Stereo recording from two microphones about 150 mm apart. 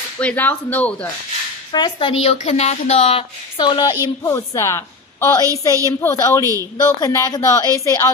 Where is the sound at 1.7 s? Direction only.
30° left (ahead or behind).